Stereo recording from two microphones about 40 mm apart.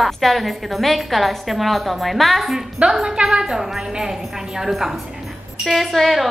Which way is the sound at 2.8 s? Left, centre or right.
Right.